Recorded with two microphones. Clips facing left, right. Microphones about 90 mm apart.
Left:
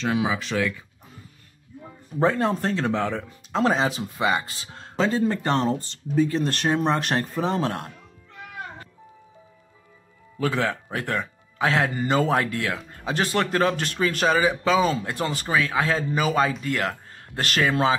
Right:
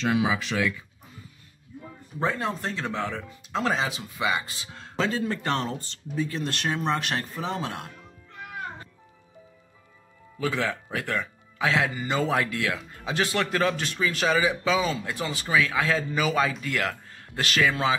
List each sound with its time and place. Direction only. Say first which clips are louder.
0.0 s speech: even; 35° left (ahead or behind)
2.1 s speech: left 6 dB; 40° left (ahead or behind)
10.4 s speech: left 3 dB; 40° left (ahead or behind)
13.8 s speech: left 3 dB; 50° left (ahead or behind)
15.4 s speech: even; 35° left (ahead or behind)